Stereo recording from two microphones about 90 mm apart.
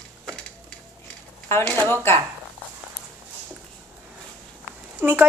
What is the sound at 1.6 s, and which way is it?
Speech, 15° left (ahead or behind).